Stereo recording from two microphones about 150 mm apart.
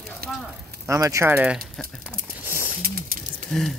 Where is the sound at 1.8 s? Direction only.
5° left (ahead or behind).